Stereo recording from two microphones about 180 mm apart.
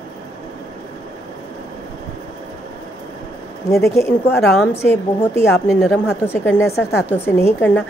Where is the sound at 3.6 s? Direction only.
15° left (ahead or behind).